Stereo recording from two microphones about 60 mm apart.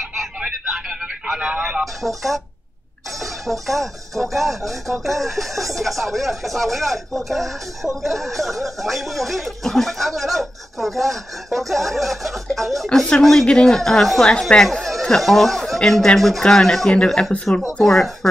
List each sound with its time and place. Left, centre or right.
0.0 s a sound: centre
2.0 s music: centre
3.6 s music: centre
16.9 s speech: centre
17.7 s music: centre